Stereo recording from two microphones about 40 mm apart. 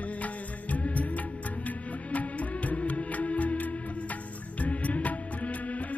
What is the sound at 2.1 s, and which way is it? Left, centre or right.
Music, left.